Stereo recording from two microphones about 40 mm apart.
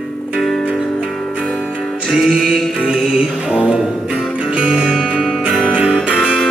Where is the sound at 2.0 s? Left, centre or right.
Centre.